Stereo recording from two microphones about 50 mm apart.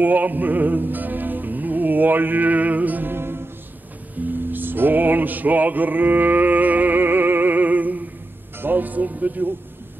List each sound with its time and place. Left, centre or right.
0.0 s music: right
4.2 s music: right